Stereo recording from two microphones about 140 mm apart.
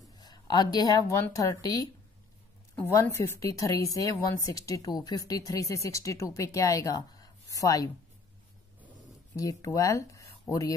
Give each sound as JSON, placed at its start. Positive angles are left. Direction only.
{"t": 0.2, "sound": "speech", "side_deg": 30}
{"t": 9.4, "sound": "speech", "side_deg": 25}